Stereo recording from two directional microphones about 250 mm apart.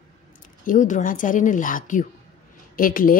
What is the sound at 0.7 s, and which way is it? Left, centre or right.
A woman's voice, left.